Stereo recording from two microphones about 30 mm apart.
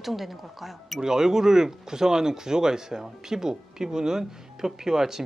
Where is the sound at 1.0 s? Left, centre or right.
Centre.